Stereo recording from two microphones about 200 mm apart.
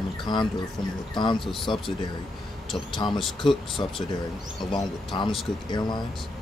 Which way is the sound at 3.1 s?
Centre (ahead or behind).